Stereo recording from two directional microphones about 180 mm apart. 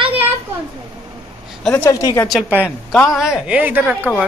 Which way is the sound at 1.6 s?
10° left (ahead or behind).